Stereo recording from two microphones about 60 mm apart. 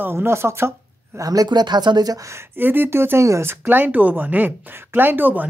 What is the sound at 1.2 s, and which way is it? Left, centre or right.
Speech, right.